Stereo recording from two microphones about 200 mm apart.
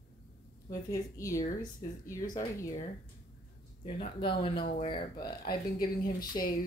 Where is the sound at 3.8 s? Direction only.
25° left (ahead or behind).